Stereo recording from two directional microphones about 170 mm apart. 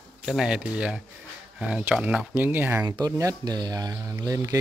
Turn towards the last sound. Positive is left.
turn(degrees=-20)  # may be behind; listen again after turning